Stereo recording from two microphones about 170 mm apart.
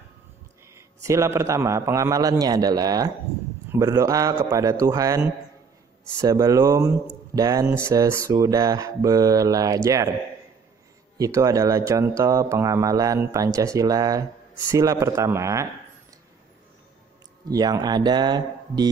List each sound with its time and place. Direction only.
0.7 s a man's voice: 15° right (ahead or behind)
11.1 s a man's voice: 20° right (ahead or behind)
17.5 s a man's voice: 20° right (ahead or behind)